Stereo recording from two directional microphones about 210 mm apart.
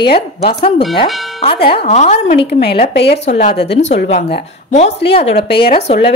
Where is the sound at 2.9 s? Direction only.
55° left (ahead or behind).